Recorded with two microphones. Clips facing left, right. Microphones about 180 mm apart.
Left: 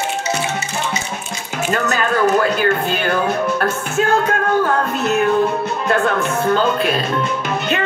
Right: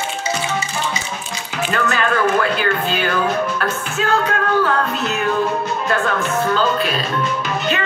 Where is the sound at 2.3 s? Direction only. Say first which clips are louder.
Left 2 dB; 50° left (ahead or behind).